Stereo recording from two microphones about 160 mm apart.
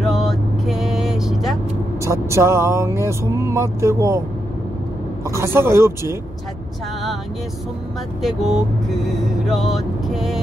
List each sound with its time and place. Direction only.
0.0 s vehicle: centre (ahead or behind)
2.0 s speech: 15° right (ahead or behind)
5.3 s speech: 15° right (ahead or behind)
8.2 s speech: centre (ahead or behind)